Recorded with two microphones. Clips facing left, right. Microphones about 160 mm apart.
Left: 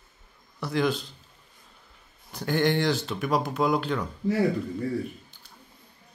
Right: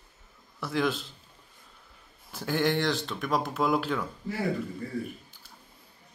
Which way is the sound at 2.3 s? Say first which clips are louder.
Left 3 dB; 5° right (ahead or behind).